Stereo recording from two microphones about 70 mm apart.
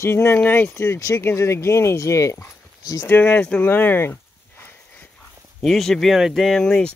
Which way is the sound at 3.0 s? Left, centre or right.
Left.